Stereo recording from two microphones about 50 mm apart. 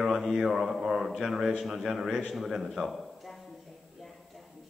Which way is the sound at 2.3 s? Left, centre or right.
Centre.